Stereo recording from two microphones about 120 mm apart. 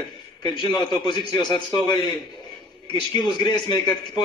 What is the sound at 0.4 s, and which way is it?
A man's voice, 40° left (ahead or behind).